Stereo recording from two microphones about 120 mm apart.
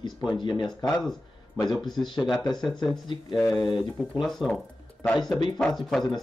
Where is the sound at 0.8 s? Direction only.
5° left (ahead or behind).